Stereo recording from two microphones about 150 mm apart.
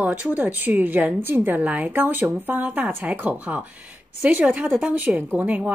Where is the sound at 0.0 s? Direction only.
10° right (ahead or behind).